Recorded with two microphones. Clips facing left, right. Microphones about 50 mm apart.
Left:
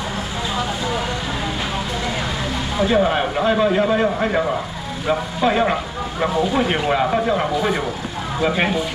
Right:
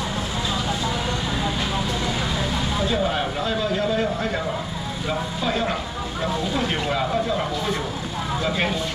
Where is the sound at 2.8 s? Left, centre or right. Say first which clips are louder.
Left 8 dB; left.